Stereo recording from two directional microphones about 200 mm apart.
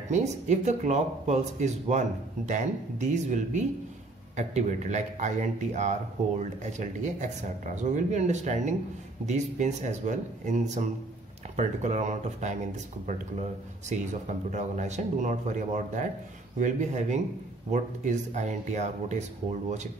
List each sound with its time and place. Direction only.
0.1 s a man's voice: 35° right (ahead or behind)